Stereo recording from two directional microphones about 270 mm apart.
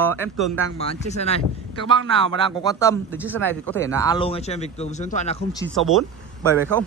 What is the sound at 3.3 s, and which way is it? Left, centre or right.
Speech, centre.